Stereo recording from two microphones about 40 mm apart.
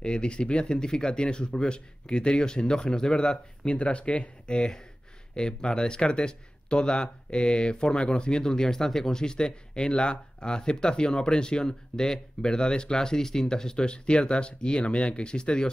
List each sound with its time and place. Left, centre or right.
0.0 s speech: left